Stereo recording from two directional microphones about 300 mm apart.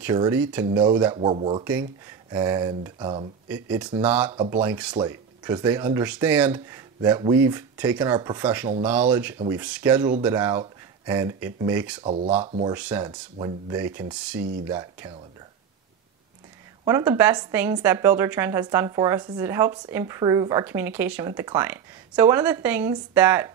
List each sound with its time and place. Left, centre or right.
0.0 s a woman's voice: centre
1.7 s a woman's voice: centre
3.6 s a woman's voice: centre
12.0 s speech: centre
12.7 s a woman's voice: centre
14.4 s speech: right
14.7 s a woman's voice: centre
16.8 s a woman's voice: centre